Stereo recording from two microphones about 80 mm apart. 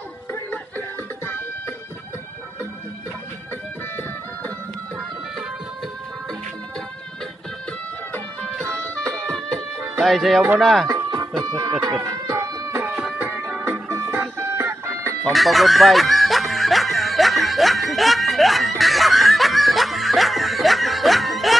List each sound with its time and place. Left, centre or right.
0.3 s music: left
8.8 s music: centre
9.8 s music: centre
10.6 s speech: centre
11.1 s music: right
12.0 s a sound: right
13.2 s music: right
15.3 s music: centre